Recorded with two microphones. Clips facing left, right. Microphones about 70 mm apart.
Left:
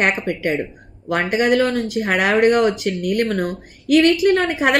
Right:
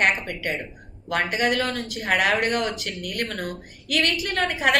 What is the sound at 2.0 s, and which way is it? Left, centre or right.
A woman's voice, centre.